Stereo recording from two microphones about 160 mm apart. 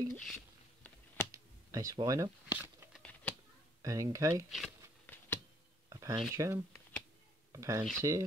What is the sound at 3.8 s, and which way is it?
Speech, 20° right (ahead or behind).